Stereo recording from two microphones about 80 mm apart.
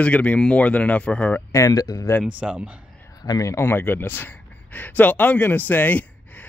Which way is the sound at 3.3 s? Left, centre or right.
Left.